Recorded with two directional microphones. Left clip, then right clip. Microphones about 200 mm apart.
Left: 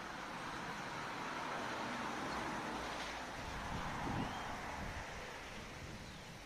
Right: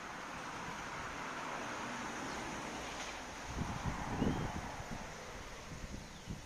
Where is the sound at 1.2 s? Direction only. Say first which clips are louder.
Left 1 dB; 45° left (ahead or behind).